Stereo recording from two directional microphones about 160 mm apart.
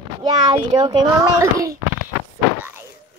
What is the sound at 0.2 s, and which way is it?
A child's voice, 25° right (ahead or behind).